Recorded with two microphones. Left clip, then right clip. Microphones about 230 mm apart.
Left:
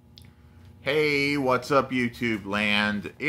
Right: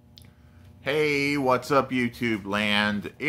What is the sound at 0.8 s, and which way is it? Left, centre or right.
Speech, centre.